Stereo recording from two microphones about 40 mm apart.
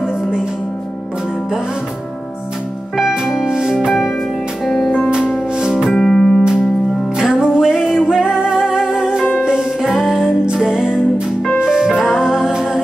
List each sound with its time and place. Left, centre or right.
3.0 s music: centre
4.6 s music: centre
5.6 s music: centre
5.9 s music: centre
7.2 s music: centre
9.8 s music: centre